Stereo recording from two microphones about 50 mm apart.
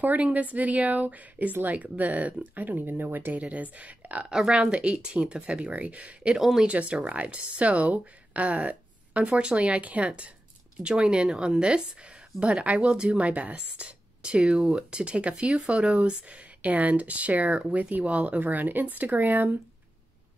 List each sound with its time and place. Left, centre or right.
0.0 s speech: right
3.4 s a woman's voice: right
4.3 s a woman's voice: centre
6.3 s speech: centre
6.7 s a woman's voice: right